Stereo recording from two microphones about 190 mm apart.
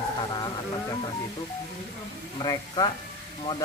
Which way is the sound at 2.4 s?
20° left (ahead or behind).